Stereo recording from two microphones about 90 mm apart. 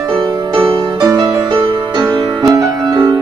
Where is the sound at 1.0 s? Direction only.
40° right (ahead or behind).